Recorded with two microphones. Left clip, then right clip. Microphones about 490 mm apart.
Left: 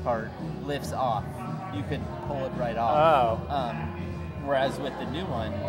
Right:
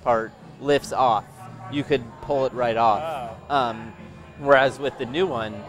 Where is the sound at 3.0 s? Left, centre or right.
Left.